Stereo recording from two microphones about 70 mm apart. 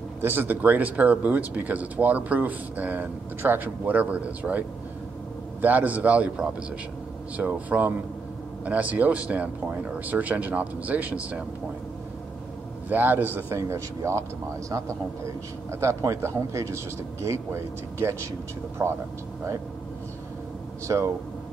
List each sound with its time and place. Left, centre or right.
0.2 s speech: right
12.9 s speech: right
13.6 s speech: right
15.7 s speech: right
20.8 s speech: right